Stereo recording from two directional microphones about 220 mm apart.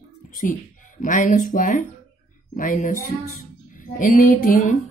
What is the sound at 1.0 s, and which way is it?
Speech, 35° left (ahead or behind).